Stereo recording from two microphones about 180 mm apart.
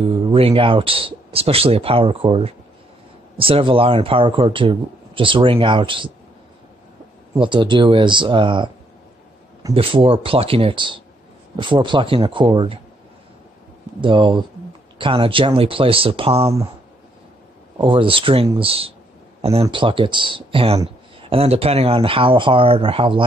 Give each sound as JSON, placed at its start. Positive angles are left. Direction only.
{"t": 0.1, "sound": "speech", "side_deg": -30}
{"t": 7.3, "sound": "speech", "side_deg": -25}
{"t": 9.8, "sound": "speech", "side_deg": -30}
{"t": 14.0, "sound": "speech", "side_deg": -25}
{"t": 17.7, "sound": "speech", "side_deg": -30}